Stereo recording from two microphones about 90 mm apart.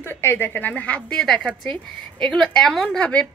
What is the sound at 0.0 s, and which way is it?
A woman's voice, 25° left (ahead or behind).